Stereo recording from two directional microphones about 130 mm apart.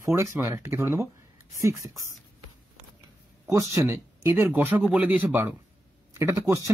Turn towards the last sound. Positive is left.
turn(degrees=-25)  # may be behind; listen again after turning